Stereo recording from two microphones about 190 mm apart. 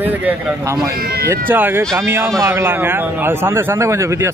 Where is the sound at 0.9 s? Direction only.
55° right (ahead or behind).